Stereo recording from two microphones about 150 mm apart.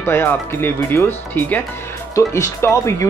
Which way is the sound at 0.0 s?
15° left (ahead or behind).